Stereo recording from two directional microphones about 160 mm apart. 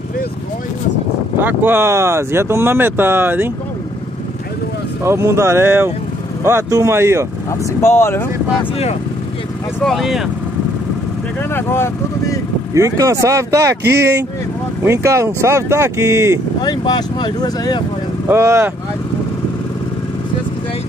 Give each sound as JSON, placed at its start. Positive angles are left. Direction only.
{"t": 1.4, "sound": "speech", "side_deg": -10}
{"t": 5.0, "sound": "speech", "side_deg": -15}
{"t": 7.8, "sound": "speech", "side_deg": 15}
{"t": 9.8, "sound": "speech", "side_deg": 0}
{"t": 11.5, "sound": "speech", "side_deg": 15}
{"t": 12.7, "sound": "speech", "side_deg": -20}
{"t": 14.8, "sound": "speech", "side_deg": -15}
{"t": 16.6, "sound": "speech", "side_deg": 25}
{"t": 18.3, "sound": "speech", "side_deg": -15}